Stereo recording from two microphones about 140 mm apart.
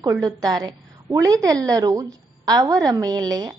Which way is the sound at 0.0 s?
25° right (ahead or behind).